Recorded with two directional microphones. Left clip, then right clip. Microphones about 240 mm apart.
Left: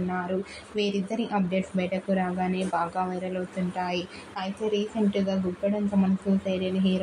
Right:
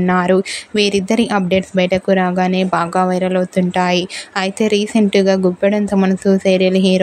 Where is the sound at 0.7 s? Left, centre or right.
Right.